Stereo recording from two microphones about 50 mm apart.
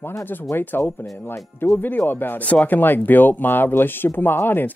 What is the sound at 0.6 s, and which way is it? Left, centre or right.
Speech, left.